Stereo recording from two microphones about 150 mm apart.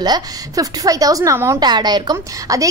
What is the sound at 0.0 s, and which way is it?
A woman's voice, 25° right (ahead or behind).